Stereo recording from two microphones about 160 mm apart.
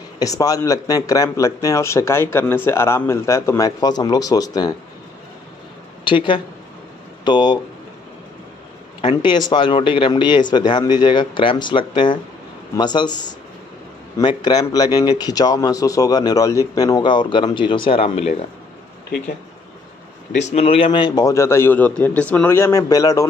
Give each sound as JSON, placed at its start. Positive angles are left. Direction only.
{"t": 0.2, "sound": "speech", "side_deg": 20}
{"t": 6.0, "sound": "a man's voice", "side_deg": 30}
{"t": 9.0, "sound": "a man's voice", "side_deg": 30}
{"t": 20.3, "sound": "speech", "side_deg": 45}